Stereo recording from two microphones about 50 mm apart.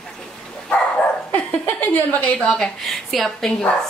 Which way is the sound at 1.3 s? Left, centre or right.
Left.